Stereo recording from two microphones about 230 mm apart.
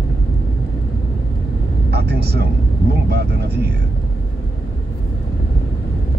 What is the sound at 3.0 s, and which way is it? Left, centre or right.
Speech, right.